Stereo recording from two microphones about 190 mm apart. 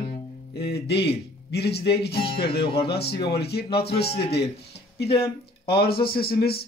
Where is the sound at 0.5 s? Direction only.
60° left (ahead or behind).